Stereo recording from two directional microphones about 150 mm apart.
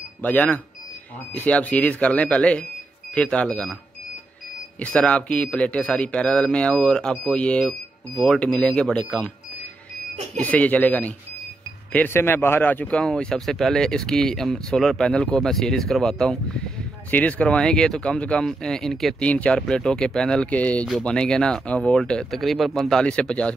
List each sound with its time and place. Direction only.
0.2 s speech: 10° left (ahead or behind)
4.7 s speech: 10° left (ahead or behind)
10.4 s speech: 10° left (ahead or behind)